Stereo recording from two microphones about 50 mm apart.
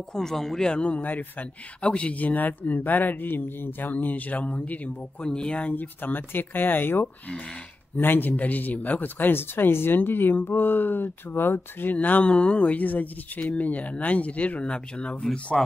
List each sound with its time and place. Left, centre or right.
0.1 s speech: centre
0.9 s a man's voice: left
5.2 s speech: centre
5.8 s a man's voice: left
11.9 s a man's voice: left